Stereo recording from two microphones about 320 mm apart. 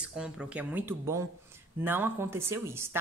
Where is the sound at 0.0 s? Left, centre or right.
Centre.